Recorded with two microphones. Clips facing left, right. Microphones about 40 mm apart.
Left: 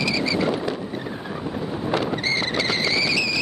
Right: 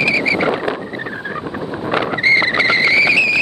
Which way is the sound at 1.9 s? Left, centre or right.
Right.